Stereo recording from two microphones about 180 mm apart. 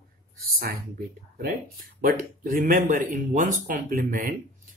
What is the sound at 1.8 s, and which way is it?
Speech, 50° right (ahead or behind).